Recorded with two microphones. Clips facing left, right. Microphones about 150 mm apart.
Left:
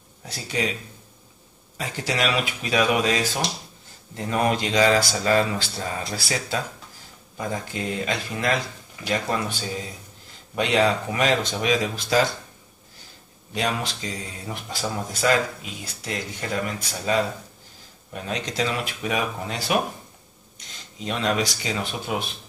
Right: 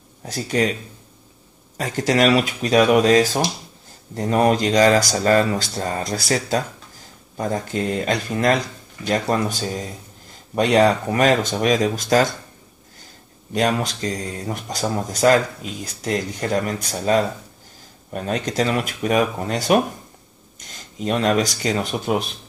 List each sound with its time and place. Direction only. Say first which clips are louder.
0.2 s speech: right 7 dB; 45° right (ahead or behind)
1.8 s speech: right 8 dB; 45° right (ahead or behind)
13.5 s speech: right 6 dB; 45° right (ahead or behind)